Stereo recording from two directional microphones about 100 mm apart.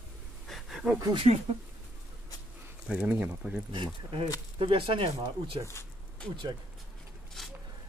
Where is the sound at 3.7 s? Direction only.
55° right (ahead or behind).